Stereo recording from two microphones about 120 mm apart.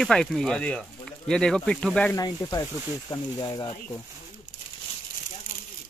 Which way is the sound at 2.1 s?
30° left (ahead or behind).